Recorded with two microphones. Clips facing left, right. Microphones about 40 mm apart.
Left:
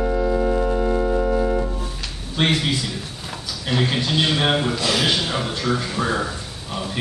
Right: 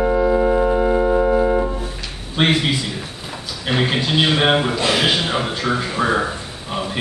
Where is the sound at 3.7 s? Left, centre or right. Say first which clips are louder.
Right 3 dB; right.